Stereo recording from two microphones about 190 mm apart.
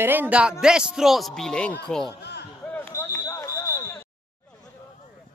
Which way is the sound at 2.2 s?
60° left (ahead or behind).